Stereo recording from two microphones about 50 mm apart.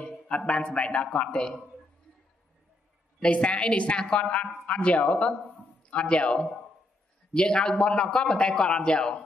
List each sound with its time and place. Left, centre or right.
0.3 s a man's voice: left
3.2 s a man's voice: left